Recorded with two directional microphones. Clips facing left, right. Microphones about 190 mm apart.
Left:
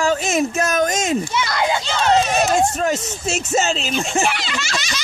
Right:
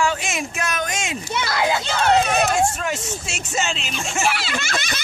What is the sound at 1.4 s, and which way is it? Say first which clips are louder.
Speech: left 1 dB; 5° right (ahead or behind).